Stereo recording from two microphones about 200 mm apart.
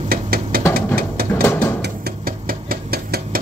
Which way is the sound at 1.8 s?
45° right (ahead or behind).